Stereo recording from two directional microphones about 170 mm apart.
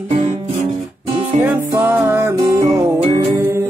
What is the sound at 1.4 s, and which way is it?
Music, 15° right (ahead or behind).